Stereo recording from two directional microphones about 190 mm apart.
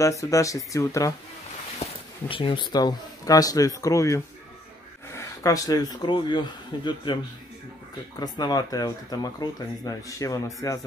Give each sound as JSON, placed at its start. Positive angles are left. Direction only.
{"t": 0.0, "sound": "speech", "side_deg": 15}
{"t": 1.8, "sound": "speech", "side_deg": 25}
{"t": 8.2, "sound": "speech", "side_deg": 20}